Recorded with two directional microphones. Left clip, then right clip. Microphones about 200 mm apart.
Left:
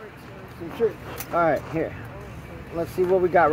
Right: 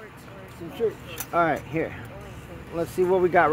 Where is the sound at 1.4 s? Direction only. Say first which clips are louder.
Left 1 dB; 45° right (ahead or behind).